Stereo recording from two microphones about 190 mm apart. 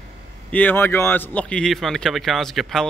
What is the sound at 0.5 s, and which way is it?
Speech, 10° left (ahead or behind).